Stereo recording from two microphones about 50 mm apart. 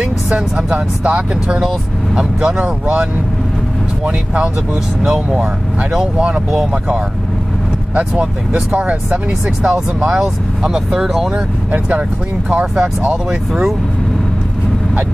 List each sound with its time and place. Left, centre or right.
0.7 s speech: right
5.1 s speech: centre
8.0 s speech: centre
12.4 s speech: right
13.5 s speech: centre